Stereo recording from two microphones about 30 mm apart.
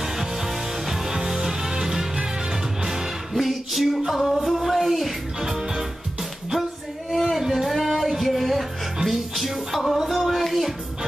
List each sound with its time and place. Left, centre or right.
0.8 s music: centre
3.3 s music: centre
4.6 s a sound: centre
5.4 s music: centre
7.1 s a sound: centre
7.3 s music: centre
7.8 s music: centre